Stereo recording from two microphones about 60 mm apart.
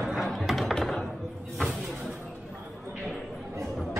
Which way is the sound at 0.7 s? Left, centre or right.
Centre.